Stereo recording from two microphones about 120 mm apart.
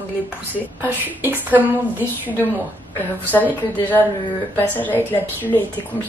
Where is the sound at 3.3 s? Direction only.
15° left (ahead or behind).